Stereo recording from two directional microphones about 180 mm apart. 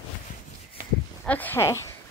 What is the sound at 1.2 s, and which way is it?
Speech, 10° left (ahead or behind).